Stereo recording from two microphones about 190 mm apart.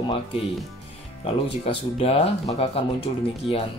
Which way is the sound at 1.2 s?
30° left (ahead or behind).